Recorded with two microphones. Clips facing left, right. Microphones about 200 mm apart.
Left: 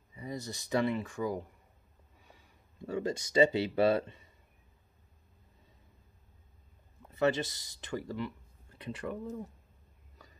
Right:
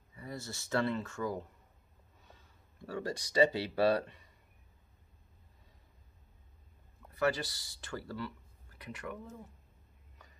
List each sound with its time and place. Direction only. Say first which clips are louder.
0.1 s speech: left 4 dB; 20° left (ahead or behind)
7.1 s speech: left 3 dB; 25° left (ahead or behind)